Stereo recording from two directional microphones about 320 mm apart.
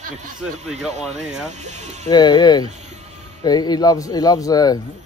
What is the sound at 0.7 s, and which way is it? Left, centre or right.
Speech, right.